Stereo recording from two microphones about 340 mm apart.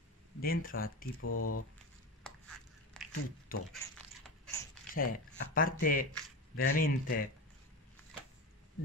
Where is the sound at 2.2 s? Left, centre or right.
Centre.